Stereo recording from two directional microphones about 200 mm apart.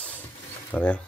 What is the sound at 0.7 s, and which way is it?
Speech, 10° left (ahead or behind).